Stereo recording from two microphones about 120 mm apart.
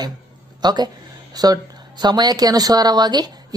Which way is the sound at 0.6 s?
35° right (ahead or behind).